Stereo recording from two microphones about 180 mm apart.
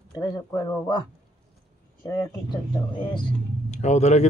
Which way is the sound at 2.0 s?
25° left (ahead or behind).